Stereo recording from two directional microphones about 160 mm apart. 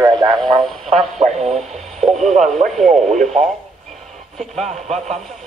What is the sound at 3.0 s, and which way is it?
Speech, 45° right (ahead or behind).